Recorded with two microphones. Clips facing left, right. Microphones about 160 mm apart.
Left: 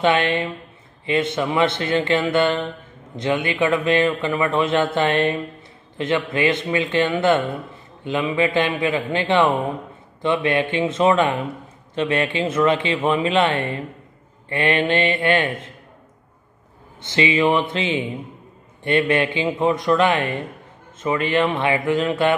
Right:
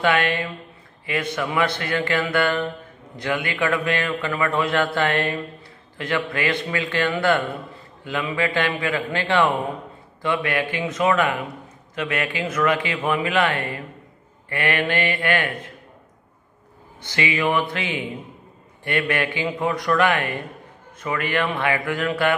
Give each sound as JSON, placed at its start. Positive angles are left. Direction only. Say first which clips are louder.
{"t": 0.0, "sound": "a man's voice", "louder": "left 2 dB", "side_deg": 20}
{"t": 17.0, "sound": "a man's voice", "louder": "left 5 dB", "side_deg": 25}